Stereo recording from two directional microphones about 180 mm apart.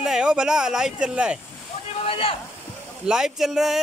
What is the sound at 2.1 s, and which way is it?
Speech, 30° left (ahead or behind).